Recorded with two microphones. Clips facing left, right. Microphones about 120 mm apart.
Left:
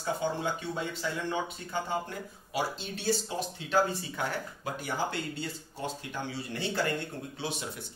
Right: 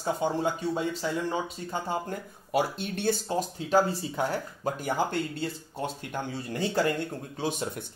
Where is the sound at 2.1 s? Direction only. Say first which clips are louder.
Right 7 dB; 55° right (ahead or behind); by 4.8 s 35° right (ahead or behind).